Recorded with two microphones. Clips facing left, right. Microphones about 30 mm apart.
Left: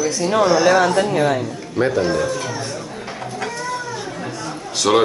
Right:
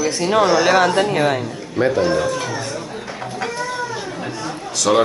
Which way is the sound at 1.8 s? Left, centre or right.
Centre.